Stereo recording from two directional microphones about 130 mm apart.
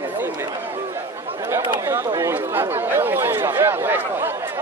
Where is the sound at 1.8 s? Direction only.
20° right (ahead or behind).